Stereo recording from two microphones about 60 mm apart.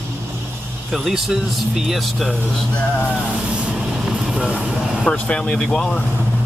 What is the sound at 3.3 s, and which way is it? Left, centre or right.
Vehicle, centre.